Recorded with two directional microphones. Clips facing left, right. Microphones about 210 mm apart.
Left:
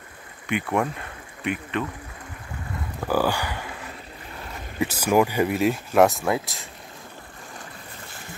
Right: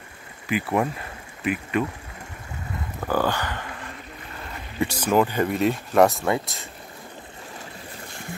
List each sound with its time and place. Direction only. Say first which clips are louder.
0.5 s speech: right 1 dB; 5° right (ahead or behind)
3.0 s speech: left 1 dB; 10° left (ahead or behind)